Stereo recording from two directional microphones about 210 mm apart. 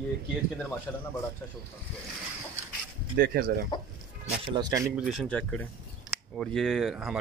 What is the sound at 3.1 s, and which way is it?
Speech, 50° right (ahead or behind).